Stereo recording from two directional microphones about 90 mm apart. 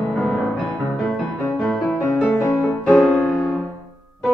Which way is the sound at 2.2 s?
30° left (ahead or behind).